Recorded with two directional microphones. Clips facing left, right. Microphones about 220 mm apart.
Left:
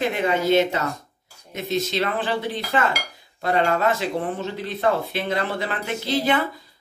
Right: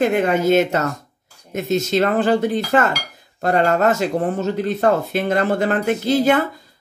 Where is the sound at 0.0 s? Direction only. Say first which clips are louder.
Right 5 dB; 50° right (ahead or behind).